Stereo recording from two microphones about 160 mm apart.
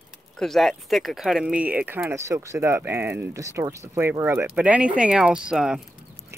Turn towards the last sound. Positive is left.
turn(degrees=-5)  # may be behind; listen again after turning